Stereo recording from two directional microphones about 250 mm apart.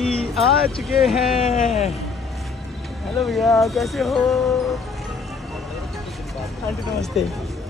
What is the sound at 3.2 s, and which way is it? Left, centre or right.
Speech, centre.